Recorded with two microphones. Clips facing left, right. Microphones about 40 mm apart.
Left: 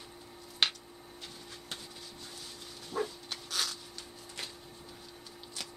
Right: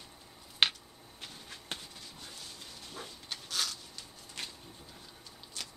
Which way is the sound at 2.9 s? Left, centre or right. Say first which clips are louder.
Left 12 dB; left.